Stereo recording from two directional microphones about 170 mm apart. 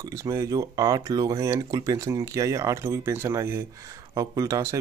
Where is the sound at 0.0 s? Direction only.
20° right (ahead or behind).